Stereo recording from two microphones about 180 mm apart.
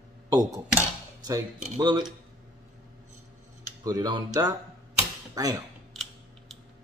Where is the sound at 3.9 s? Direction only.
20° right (ahead or behind).